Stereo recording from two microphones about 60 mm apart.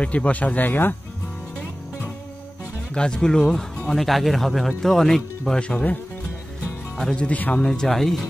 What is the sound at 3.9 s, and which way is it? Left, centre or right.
Speech, centre.